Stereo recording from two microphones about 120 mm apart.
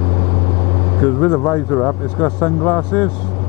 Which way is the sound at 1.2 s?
20° left (ahead or behind).